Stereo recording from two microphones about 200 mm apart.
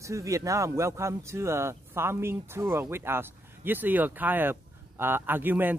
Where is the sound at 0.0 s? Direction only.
15° right (ahead or behind).